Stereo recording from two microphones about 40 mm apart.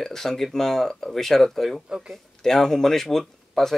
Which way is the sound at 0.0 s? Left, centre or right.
Centre.